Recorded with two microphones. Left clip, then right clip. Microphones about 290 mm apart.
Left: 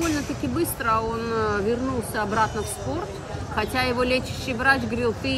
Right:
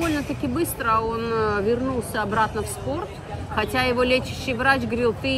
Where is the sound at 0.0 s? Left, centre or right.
Centre.